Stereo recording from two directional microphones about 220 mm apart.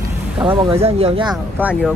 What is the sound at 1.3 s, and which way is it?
Speech, 5° right (ahead or behind).